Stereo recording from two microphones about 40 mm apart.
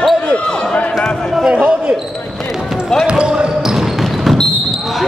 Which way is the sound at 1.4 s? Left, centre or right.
Right.